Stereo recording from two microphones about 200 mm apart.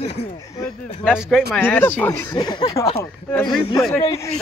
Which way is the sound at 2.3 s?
20° left (ahead or behind).